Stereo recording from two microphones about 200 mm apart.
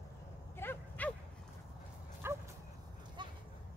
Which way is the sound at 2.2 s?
10° right (ahead or behind).